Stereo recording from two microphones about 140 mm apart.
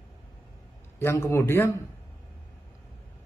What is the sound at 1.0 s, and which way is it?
Speech, 15° left (ahead or behind).